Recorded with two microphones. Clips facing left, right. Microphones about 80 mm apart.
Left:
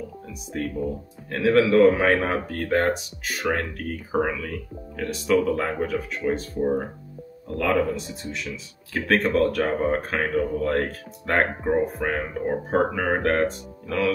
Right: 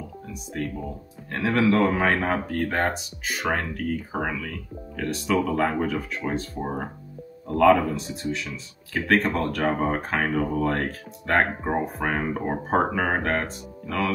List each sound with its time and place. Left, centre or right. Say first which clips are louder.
0.5 s speech: left 4 dB; centre
6.6 s speech: left 6 dB; centre
12.4 s speech: left 2 dB; right
12.7 s speech: even; centre